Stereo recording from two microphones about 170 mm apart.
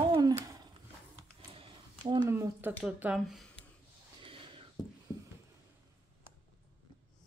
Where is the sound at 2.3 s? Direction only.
15° right (ahead or behind).